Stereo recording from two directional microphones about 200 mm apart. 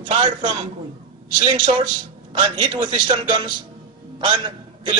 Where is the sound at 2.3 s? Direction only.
25° right (ahead or behind).